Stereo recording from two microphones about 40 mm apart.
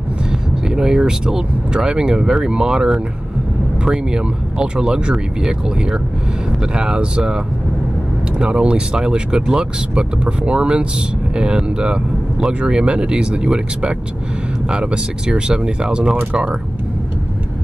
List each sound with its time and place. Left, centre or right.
0.7 s speech: centre
14.7 s speech: right